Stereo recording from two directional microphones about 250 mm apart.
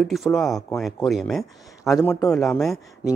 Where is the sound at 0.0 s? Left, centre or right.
Centre.